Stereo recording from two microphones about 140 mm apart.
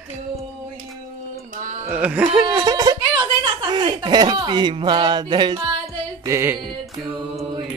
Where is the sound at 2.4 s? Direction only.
30° right (ahead or behind).